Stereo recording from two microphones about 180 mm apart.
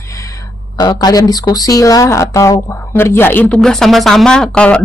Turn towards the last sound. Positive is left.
turn(degrees=5)  # may be behind; listen again after turning